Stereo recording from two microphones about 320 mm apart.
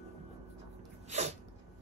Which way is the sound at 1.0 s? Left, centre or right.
Right.